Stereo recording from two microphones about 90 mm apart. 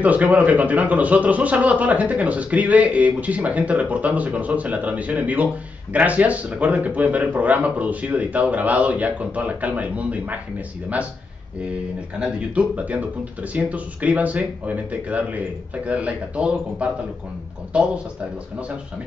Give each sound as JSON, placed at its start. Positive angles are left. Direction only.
{"t": 0.0, "sound": "speech", "side_deg": -15}
{"t": 12.2, "sound": "speech", "side_deg": -15}